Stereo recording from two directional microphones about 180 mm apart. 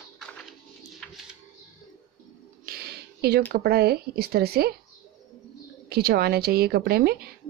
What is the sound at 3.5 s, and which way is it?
A woman's voice, 60° right (ahead or behind).